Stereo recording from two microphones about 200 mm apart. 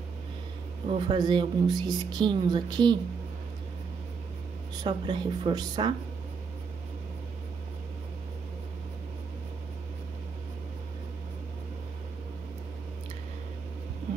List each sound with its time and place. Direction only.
0.8 s speech: 25° right (ahead or behind)
4.8 s speech: 20° right (ahead or behind)